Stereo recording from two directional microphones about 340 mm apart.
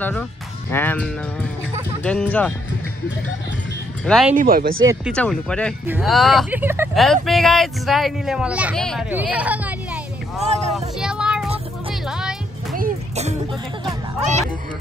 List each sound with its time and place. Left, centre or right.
0.0 s speech: centre
4.0 s speech: centre
4.4 s speech: right
4.8 s speech: centre
10.4 s a sound: centre
11.0 s child singing: centre
11.9 s music: centre
12.7 s music: right